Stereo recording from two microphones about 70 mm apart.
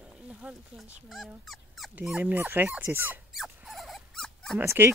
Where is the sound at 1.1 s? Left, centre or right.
Centre.